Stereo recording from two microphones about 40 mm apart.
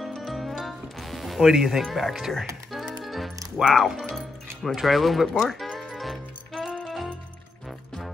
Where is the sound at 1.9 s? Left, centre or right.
Centre.